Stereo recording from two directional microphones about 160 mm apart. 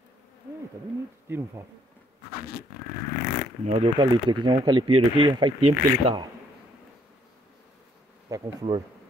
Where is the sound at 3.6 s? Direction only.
35° right (ahead or behind).